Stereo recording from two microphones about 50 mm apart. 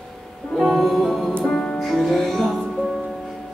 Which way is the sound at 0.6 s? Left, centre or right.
Centre.